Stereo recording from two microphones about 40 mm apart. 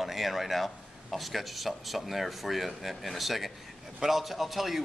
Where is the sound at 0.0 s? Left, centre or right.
Centre.